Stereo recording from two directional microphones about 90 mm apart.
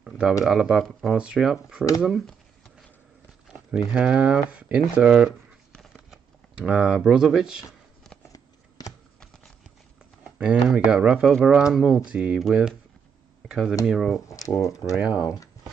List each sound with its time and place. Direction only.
0.0 s speech: 5° right (ahead or behind)
3.9 s speech: 15° right (ahead or behind)
8.3 s shuffling cards: 40° left (ahead or behind)
10.2 s speech: 10° right (ahead or behind)
15.0 s speech: 15° right (ahead or behind)